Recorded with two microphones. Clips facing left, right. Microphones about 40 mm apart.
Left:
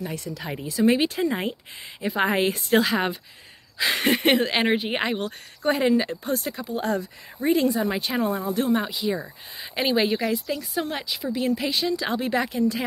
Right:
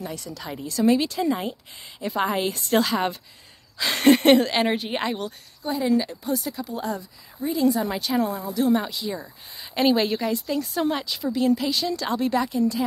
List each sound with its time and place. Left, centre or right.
0.0 s a woman's voice: left
1.5 s a woman's voice: left
2.8 s speech: centre
5.6 s speech: left
7.8 s a woman's voice: centre
9.8 s speech: centre
11.1 s a woman's voice: centre; by 12.8 s left